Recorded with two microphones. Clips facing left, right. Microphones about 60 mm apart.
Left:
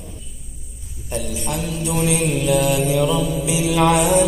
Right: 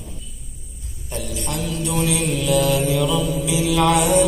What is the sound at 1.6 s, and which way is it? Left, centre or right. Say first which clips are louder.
Mantra: even; centre.